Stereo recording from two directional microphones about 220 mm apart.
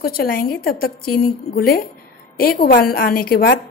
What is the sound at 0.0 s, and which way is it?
A woman's voice, 40° left (ahead or behind).